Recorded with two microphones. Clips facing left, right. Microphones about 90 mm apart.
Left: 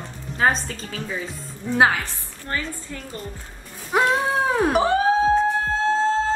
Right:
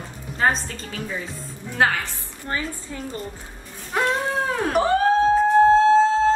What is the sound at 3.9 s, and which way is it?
Cat, 15° left (ahead or behind).